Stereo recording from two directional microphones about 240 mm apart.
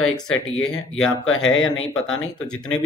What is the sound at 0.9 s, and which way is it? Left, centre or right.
Speech, left.